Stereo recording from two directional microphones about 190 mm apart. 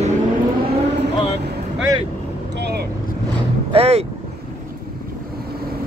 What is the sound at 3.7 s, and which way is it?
Vehicle, 30° right (ahead or behind).